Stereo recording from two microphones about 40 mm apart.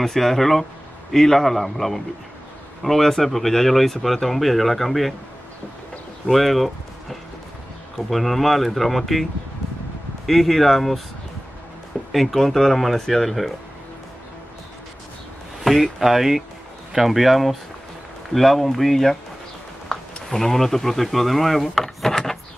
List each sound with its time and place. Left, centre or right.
0.0 s a man's voice: centre
6.2 s speech: centre
12.1 s speech: centre
15.6 s speech: centre
19.9 s a sound: centre
20.2 s speech: centre